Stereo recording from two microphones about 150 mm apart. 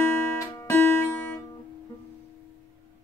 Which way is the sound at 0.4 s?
20° left (ahead or behind).